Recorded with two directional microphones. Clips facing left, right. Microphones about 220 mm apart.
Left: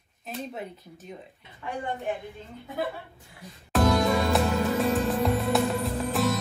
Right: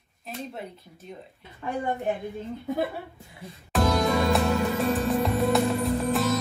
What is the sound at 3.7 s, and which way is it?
Music, centre (ahead or behind).